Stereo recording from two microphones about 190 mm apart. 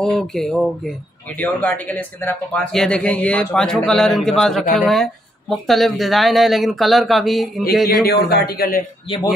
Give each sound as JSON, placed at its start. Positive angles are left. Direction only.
{"t": 0.0, "sound": "speech", "side_deg": 5}
{"t": 8.1, "sound": "a man's voice", "side_deg": 55}